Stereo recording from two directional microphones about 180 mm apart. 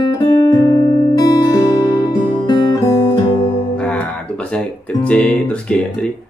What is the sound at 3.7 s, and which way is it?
Music, 5° left (ahead or behind).